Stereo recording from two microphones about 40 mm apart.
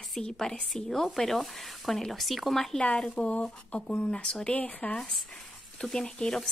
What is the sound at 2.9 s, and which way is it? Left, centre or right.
Speech, left.